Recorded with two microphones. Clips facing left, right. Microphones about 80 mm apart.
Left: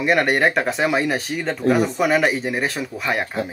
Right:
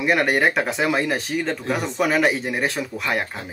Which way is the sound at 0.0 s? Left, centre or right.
Centre.